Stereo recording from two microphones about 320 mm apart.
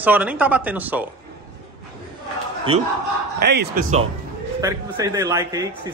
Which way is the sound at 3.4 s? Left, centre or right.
Right.